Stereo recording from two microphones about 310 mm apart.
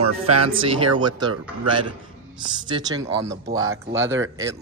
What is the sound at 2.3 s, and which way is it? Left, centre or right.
Speech, centre.